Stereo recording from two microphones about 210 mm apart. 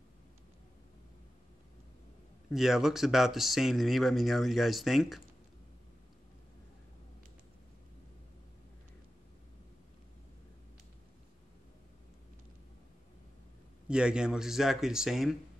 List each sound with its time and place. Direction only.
2.5 s speech: centre (ahead or behind)
13.8 s speech: 5° right (ahead or behind)